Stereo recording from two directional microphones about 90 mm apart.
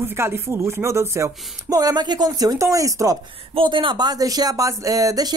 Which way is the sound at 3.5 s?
70° right (ahead or behind).